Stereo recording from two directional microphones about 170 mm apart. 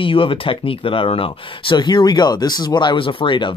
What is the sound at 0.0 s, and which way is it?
Speech, 30° left (ahead or behind).